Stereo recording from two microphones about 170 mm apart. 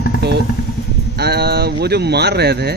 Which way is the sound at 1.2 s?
70° right (ahead or behind).